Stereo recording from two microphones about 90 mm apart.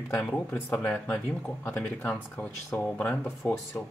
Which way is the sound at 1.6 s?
25° left (ahead or behind).